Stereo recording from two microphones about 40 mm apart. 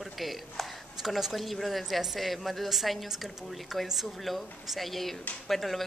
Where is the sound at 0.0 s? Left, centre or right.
Centre.